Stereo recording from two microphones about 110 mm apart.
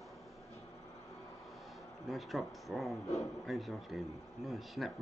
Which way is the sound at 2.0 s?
Centre (ahead or behind).